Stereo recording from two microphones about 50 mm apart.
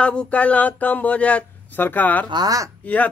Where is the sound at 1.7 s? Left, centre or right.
Left.